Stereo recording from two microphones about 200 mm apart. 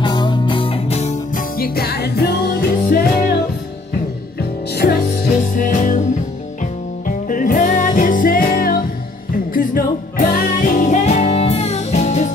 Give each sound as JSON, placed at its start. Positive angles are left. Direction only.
{"t": 0.0, "sound": "music", "side_deg": 20}
{"t": 4.4, "sound": "music", "side_deg": 50}